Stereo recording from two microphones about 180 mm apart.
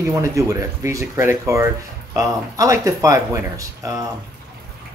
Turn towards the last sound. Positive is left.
turn(degrees=-20)  # may be behind; listen again after turning